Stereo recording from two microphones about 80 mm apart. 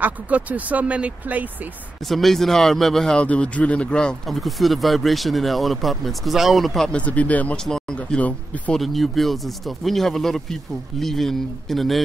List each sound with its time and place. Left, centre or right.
0.0 s speech: centre
2.0 s speech: centre
3.3 s speech: centre
7.0 s speech: centre
8.7 s speech: centre